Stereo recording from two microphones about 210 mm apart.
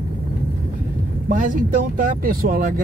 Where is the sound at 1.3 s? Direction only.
40° right (ahead or behind).